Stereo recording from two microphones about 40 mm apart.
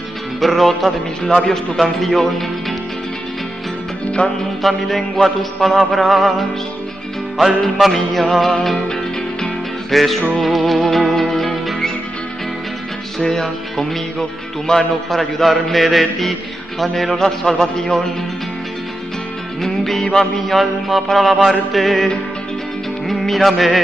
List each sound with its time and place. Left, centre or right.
0.4 s music: centre
1.5 s speech: centre
4.2 s music: left
4.6 s music: centre
7.9 s music: centre
9.8 s music: centre
13.2 s speech: centre
15.0 s music: centre
16.8 s speech: centre
19.6 s speech: centre
20.4 s music: centre
23.0 s music: centre